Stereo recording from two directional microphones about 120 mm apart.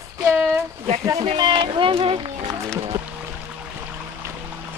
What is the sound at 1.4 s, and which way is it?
Speech, 40° right (ahead or behind).